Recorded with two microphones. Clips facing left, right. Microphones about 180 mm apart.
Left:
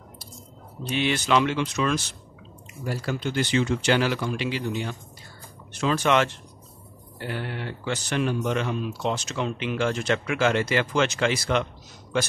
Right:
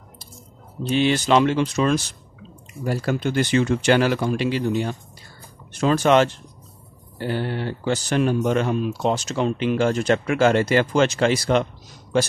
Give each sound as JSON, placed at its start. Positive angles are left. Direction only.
{"t": 0.8, "sound": "speech", "side_deg": -35}
{"t": 2.8, "sound": "speech", "side_deg": -50}